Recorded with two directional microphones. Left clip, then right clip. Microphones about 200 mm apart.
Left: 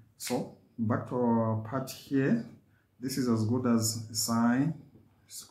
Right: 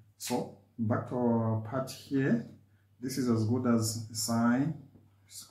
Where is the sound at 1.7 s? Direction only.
25° left (ahead or behind).